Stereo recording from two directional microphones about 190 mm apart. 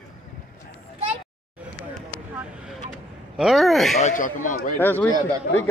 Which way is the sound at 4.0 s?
45° left (ahead or behind).